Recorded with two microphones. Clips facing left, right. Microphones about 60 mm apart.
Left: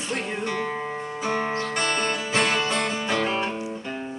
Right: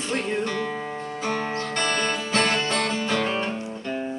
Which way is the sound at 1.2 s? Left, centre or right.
Centre.